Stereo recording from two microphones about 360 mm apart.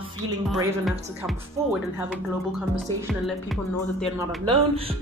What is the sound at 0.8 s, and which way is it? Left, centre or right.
Speech, centre.